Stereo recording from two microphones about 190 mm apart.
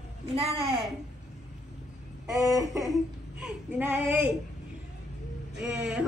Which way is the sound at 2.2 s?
15° right (ahead or behind).